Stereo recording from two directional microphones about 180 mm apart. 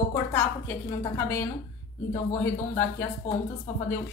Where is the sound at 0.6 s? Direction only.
15° left (ahead or behind).